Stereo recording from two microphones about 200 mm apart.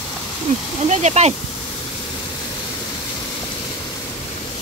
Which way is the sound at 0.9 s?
35° right (ahead or behind).